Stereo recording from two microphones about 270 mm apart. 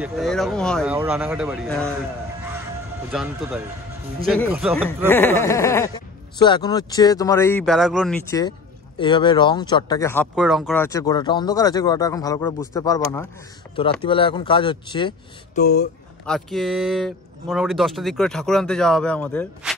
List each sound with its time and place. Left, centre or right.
0.0 s speech: centre
3.1 s speech: centre
4.8 s speech: centre
8.3 s speech: centre
10.3 s speech: centre
15.6 s speech: left
16.3 s speech: centre